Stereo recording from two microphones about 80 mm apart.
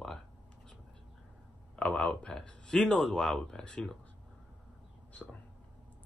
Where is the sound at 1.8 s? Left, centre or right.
Centre.